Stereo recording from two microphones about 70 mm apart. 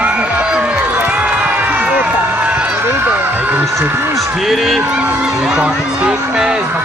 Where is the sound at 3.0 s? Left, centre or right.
Right.